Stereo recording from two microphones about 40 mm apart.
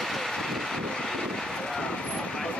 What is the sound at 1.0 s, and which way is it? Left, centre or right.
Vehicle, centre.